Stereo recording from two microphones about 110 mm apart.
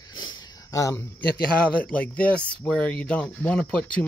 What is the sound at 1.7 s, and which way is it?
Speech, 10° left (ahead or behind).